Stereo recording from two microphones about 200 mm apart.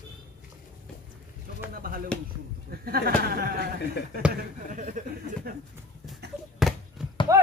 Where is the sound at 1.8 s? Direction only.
45° right (ahead or behind).